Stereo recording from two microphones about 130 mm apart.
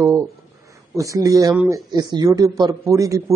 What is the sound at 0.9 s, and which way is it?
A man's voice, 25° right (ahead or behind).